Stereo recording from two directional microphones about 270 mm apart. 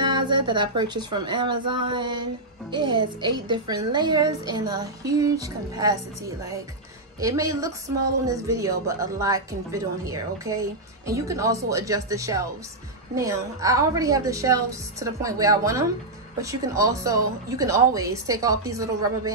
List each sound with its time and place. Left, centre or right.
0.0 s a sound: centre
0.5 s a woman's voice: centre
7.2 s a woman's voice: centre